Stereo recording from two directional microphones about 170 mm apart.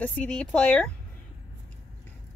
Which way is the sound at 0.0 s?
10° left (ahead or behind).